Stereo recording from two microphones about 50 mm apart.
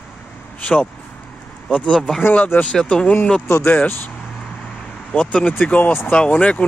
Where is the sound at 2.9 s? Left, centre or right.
Left.